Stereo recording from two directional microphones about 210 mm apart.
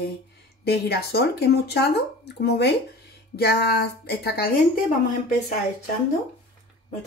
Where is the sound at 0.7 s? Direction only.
50° left (ahead or behind).